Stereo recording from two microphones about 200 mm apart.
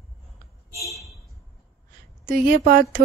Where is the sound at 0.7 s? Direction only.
Centre (ahead or behind).